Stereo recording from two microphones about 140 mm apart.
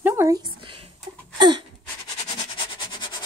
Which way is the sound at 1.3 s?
30° right (ahead or behind).